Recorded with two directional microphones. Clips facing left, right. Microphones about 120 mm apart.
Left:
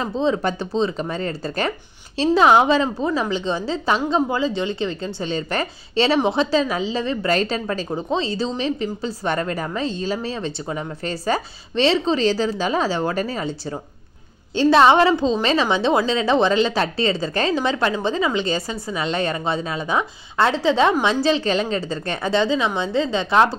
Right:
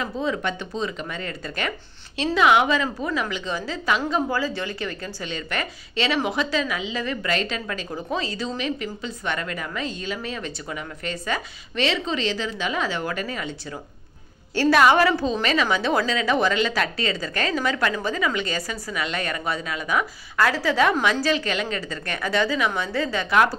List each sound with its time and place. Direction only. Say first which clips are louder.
0.0 s a woman's voice: left 5 dB; 30° left (ahead or behind)